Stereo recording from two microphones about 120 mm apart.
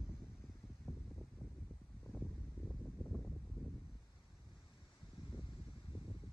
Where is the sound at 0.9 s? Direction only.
20° left (ahead or behind).